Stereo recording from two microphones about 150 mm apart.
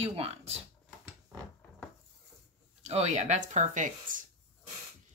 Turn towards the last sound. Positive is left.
turn(degrees=-60)  # may be behind; listen again after turning